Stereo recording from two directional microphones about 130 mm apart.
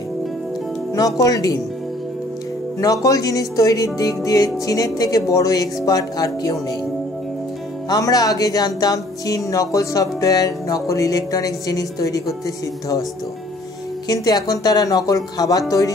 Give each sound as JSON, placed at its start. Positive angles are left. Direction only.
{"t": 0.9, "sound": "speech", "side_deg": 25}
{"t": 2.8, "sound": "speech", "side_deg": 25}
{"t": 7.9, "sound": "speech", "side_deg": 30}
{"t": 14.0, "sound": "speech", "side_deg": 30}